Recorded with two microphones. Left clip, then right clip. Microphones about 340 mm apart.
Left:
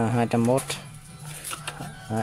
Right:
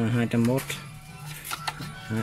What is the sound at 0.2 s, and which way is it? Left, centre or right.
Speech, centre.